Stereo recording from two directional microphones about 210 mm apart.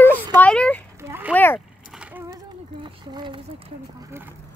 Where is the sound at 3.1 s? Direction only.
20° right (ahead or behind).